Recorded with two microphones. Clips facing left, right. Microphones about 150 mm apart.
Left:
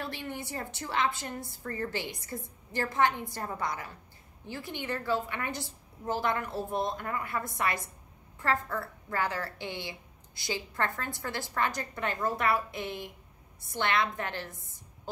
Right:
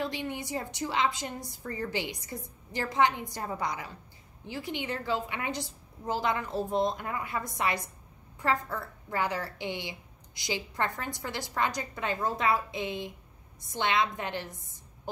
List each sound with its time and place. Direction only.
0.0 s a woman's voice: 15° right (ahead or behind)